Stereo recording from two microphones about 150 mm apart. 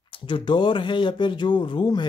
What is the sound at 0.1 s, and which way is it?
Speech, 35° left (ahead or behind).